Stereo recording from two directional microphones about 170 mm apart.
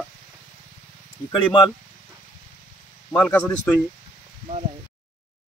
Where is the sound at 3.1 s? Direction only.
10° left (ahead or behind).